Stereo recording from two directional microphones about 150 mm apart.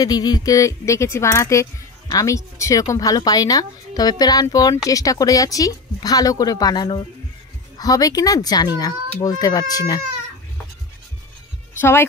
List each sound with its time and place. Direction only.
0.0 s speech: 25° left (ahead or behind)
11.8 s speech: 15° left (ahead or behind)